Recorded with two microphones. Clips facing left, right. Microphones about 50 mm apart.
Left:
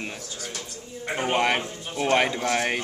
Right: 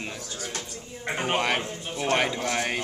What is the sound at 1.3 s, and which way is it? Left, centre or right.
A man's voice, centre.